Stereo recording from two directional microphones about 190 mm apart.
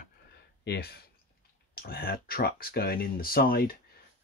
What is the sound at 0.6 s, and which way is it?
Speech, 60° left (ahead or behind).